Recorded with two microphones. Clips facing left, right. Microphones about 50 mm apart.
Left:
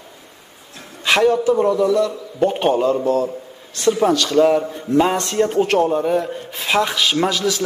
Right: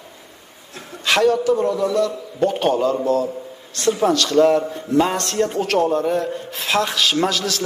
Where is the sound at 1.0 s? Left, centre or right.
Centre.